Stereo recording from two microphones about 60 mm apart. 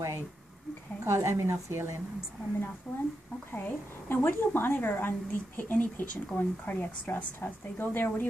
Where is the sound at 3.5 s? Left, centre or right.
Left.